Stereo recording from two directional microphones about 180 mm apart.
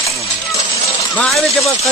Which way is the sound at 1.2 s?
Centre (ahead or behind).